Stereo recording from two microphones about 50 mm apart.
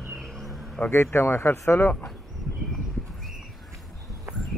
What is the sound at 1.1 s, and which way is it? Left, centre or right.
Speech, left.